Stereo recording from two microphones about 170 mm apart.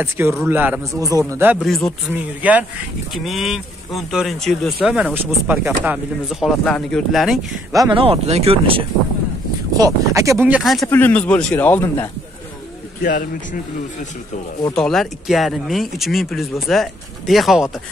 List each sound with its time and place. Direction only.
0.0 s a man's voice: 10° right (ahead or behind)
1.6 s speech: 5° left (ahead or behind)
2.4 s a man's voice: 10° right (ahead or behind)
7.7 s speech: 20° right (ahead or behind)
8.0 s speech: 35° right (ahead or behind)
9.8 s a man's voice: 20° right (ahead or behind); by 10.9 s centre (ahead or behind)
10.9 s speech: 10° left (ahead or behind)
13.0 s speech: 50° left (ahead or behind)
14.7 s speech: 5° left (ahead or behind)